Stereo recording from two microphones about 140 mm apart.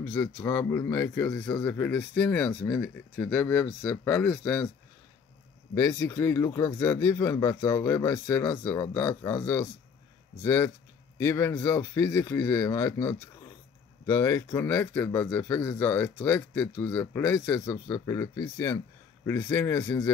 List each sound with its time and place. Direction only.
0.0 s speech: 15° left (ahead or behind)
5.8 s speech: 20° left (ahead or behind)